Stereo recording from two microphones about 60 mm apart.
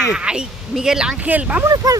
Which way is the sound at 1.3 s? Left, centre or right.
Right.